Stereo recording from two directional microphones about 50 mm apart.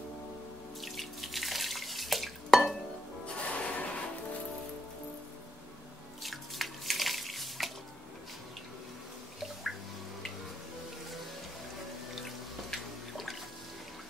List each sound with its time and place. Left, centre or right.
0.7 s water: centre
3.3 s music: left
6.2 s a sound: centre
12.2 s sink: centre